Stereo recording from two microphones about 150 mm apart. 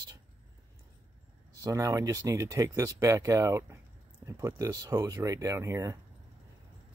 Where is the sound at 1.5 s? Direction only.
20° right (ahead or behind).